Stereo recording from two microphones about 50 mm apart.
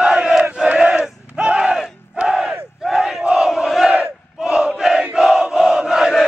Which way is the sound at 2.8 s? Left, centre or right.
Centre.